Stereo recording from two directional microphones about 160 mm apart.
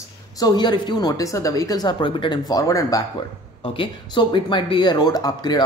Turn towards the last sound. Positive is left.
turn(degrees=25)  # may be behind; listen again after turning